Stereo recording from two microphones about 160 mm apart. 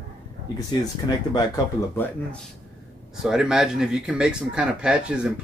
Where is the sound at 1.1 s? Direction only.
25° left (ahead or behind).